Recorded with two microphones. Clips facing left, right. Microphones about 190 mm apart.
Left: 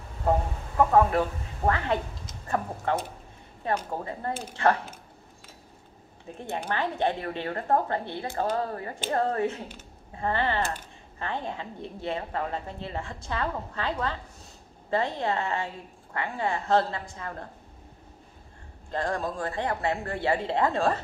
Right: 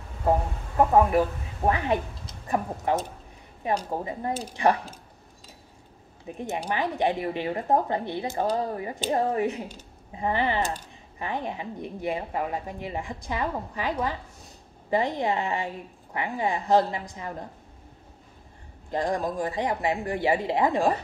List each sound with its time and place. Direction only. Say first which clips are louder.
0.7 s speech: right 1 dB; 15° right (ahead or behind)
6.2 s speech: right 2 dB; 15° right (ahead or behind)
18.9 s speech: right 3 dB; 15° right (ahead or behind)